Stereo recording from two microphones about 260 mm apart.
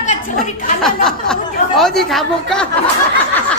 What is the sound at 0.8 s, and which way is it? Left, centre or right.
Chatter, centre.